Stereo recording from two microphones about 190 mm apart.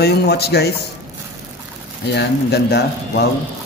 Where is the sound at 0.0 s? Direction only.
60° left (ahead or behind).